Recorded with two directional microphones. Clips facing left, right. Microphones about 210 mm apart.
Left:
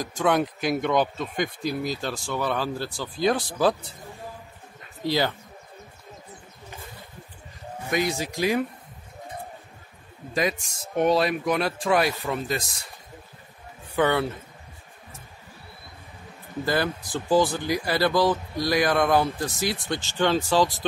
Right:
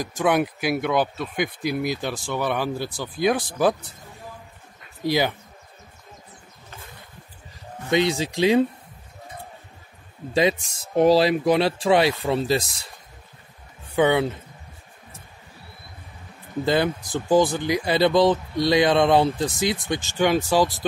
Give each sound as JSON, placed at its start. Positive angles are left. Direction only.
{"t": 0.0, "sound": "speech", "side_deg": -10}
{"t": 5.0, "sound": "speech", "side_deg": -15}
{"t": 7.9, "sound": "speech", "side_deg": -25}
{"t": 10.3, "sound": "speech", "side_deg": -30}
{"t": 13.9, "sound": "speech", "side_deg": -15}
{"t": 16.6, "sound": "speech", "side_deg": -20}